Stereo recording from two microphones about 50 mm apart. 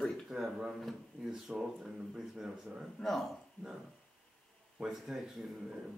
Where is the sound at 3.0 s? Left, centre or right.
Centre.